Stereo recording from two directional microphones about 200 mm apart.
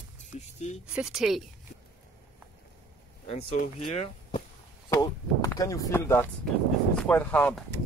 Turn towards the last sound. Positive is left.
turn(degrees=5)  # may be behind; listen again after turning